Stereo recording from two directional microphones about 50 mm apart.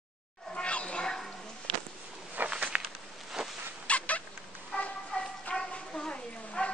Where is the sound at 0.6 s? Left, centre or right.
Left.